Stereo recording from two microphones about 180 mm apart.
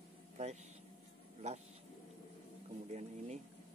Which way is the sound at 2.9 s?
40° right (ahead or behind).